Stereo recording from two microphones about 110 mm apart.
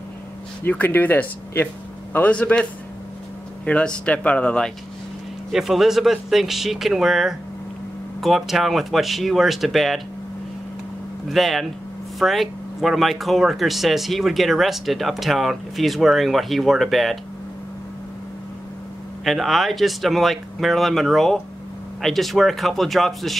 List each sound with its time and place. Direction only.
0.7 s speech: 15° left (ahead or behind)
5.5 s speech: 5° right (ahead or behind)
11.2 s speech: centre (ahead or behind)
19.2 s speech: centre (ahead or behind)